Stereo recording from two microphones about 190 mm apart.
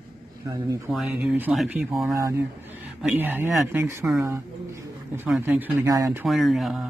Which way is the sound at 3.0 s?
5° right (ahead or behind).